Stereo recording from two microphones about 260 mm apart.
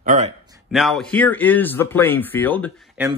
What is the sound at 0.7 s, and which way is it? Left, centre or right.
Speech, centre.